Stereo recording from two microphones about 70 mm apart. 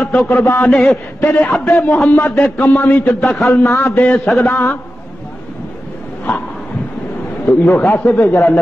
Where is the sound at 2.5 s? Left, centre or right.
Left.